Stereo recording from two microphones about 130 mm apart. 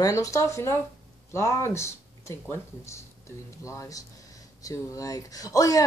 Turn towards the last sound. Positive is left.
turn(degrees=25)  # may be behind; listen again after turning